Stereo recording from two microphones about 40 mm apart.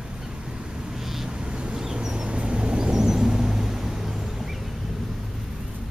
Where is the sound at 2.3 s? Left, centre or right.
Right; by 5.2 s centre.